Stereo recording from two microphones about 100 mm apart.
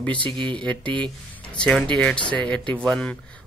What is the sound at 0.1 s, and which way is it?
Speech, 55° right (ahead or behind).